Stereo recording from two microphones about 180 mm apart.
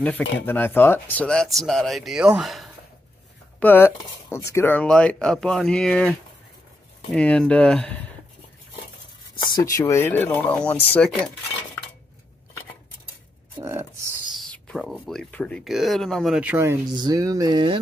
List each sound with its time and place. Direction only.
0.0 s speech: 10° left (ahead or behind)
3.5 s speech: 10° left (ahead or behind)
9.3 s speech: 20° left (ahead or behind)
13.6 s a sound: 15° right (ahead or behind)
14.3 s speech: 5° left (ahead or behind)
16.9 s speech: 20° right (ahead or behind)